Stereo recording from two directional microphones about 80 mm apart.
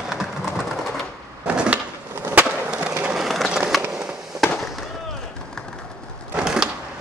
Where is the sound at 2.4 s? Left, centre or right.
Right.